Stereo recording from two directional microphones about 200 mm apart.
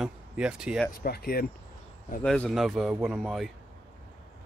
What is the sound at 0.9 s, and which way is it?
Speech, 50° left (ahead or behind).